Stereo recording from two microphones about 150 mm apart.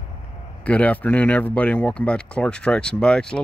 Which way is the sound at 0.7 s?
10° left (ahead or behind).